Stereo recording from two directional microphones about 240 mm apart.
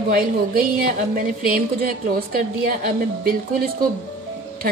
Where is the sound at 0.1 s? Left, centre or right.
Right.